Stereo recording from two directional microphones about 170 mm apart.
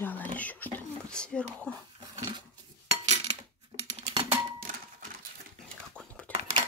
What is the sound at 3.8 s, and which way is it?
Typing, 35° right (ahead or behind).